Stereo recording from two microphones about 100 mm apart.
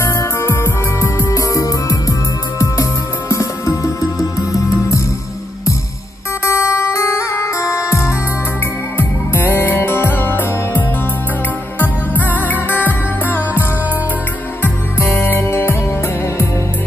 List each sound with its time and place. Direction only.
0.0 s music: 30° left (ahead or behind)
6.4 s music: 25° left (ahead or behind)
11.8 s music: 20° left (ahead or behind)